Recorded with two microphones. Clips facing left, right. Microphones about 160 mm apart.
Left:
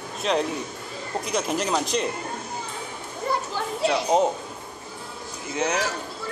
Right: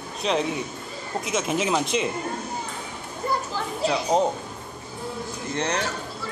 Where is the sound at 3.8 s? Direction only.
Centre (ahead or behind).